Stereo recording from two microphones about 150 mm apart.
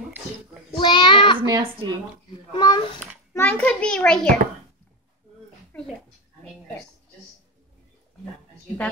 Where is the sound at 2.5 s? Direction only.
30° left (ahead or behind).